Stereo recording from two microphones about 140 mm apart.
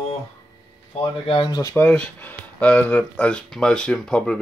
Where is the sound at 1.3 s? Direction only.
35° left (ahead or behind).